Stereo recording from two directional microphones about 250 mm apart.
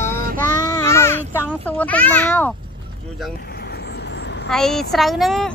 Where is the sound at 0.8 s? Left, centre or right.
Centre.